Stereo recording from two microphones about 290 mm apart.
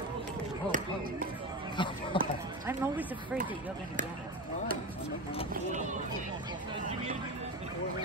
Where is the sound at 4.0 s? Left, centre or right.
Right.